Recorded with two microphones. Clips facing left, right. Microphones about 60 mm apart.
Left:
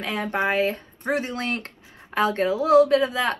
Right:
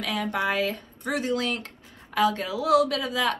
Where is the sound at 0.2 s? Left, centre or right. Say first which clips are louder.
Left 4 dB; left.